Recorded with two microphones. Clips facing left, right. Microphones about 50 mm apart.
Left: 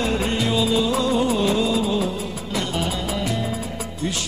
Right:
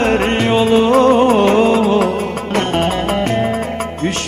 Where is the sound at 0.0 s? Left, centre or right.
Right.